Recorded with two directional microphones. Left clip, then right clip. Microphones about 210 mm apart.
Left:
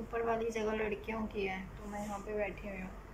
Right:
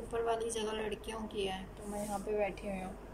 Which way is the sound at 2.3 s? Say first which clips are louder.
Right 3 dB; 10° right (ahead or behind).